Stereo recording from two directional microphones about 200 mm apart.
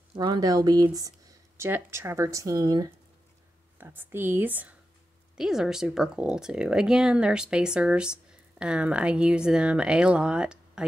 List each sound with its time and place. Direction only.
0.1 s speech: 20° right (ahead or behind); by 10.8 s 5° right (ahead or behind)